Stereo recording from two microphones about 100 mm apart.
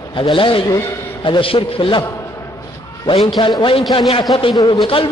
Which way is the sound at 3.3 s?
50° left (ahead or behind).